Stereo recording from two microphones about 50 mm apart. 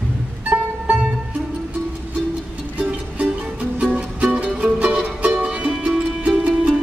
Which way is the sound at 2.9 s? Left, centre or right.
Right.